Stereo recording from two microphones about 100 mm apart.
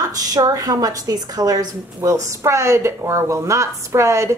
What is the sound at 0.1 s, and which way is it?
Speech, 40° right (ahead or behind).